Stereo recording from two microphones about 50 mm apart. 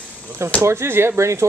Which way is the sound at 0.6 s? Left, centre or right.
Right.